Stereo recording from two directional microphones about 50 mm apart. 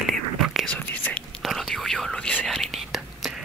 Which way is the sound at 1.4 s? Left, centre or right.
Centre.